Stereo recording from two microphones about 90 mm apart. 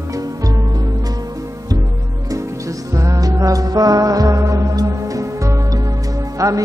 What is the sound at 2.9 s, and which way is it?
Music, 35° right (ahead or behind).